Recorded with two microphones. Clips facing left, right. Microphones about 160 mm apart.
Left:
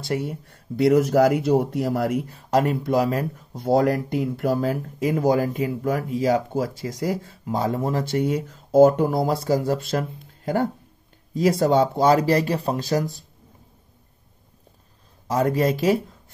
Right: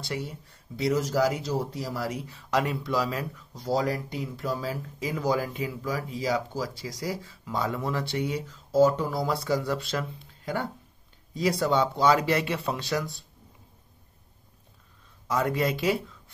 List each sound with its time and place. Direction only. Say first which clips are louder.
0.0 s speech: left 8 dB; 50° left (ahead or behind)
15.2 s speech: left 5 dB; 40° left (ahead or behind)